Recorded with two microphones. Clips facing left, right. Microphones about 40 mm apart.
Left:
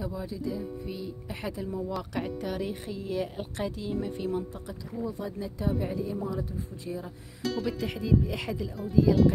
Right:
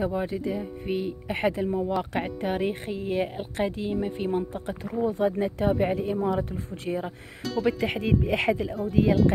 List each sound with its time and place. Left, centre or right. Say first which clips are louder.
0.0 s speech: right 7 dB; right
7.4 s music: right 2 dB; centre
7.8 s speech: right 3 dB; right